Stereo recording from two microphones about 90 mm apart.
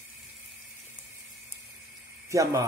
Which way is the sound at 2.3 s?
35° right (ahead or behind).